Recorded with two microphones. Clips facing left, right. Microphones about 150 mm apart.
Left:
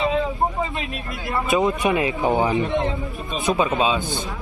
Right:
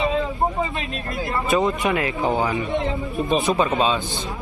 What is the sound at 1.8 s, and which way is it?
Speech, 20° left (ahead or behind).